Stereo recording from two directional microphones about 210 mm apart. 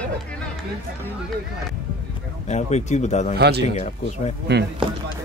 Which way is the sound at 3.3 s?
50° right (ahead or behind).